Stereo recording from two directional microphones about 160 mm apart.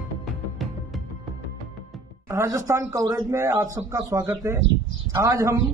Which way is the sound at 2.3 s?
20° right (ahead or behind).